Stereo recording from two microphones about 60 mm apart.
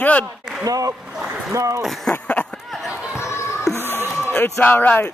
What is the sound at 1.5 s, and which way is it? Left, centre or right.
Speech, right.